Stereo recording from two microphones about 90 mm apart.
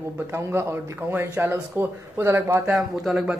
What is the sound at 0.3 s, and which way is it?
A man's voice, 30° right (ahead or behind).